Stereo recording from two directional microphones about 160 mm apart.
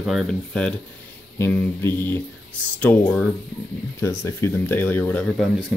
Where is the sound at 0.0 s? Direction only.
Centre (ahead or behind).